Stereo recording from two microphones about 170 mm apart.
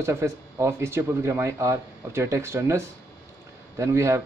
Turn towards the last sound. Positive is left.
turn(degrees=-15)  # may be behind; listen again after turning